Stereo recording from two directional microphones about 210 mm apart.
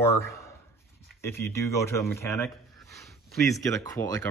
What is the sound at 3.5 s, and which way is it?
Speech, 15° left (ahead or behind).